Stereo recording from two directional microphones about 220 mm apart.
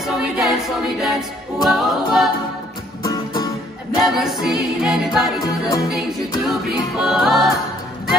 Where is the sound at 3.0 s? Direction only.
20° left (ahead or behind).